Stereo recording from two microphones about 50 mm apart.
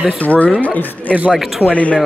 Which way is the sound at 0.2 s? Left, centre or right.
Left.